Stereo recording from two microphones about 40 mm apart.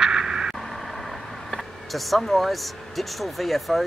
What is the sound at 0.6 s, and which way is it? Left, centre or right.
Vehicle, centre.